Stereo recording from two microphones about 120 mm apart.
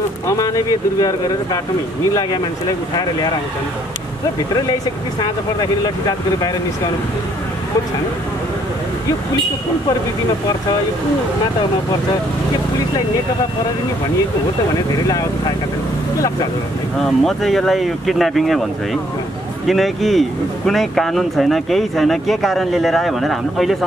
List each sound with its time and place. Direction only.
5.2 s speech: 35° left (ahead or behind)
17.0 s speech: centre (ahead or behind)
19.6 s speech: centre (ahead or behind)